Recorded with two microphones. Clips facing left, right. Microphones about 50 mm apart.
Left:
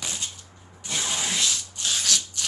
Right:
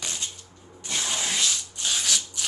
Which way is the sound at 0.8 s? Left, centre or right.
Centre.